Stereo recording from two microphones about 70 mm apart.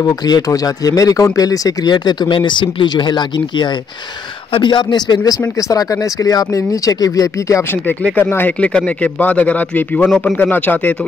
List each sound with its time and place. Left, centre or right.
0.0 s a man's voice: left
5.6 s speech: left
8.2 s speech: left
8.5 s speech: centre
10.0 s speech: centre
10.3 s speech: left